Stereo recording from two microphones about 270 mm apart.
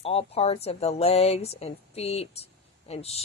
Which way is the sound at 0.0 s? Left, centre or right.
Left.